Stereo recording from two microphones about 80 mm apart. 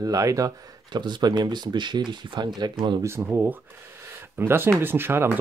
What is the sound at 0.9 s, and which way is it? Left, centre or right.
Speech, right.